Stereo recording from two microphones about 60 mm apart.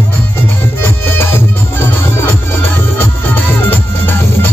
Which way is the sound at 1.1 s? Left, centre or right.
Left.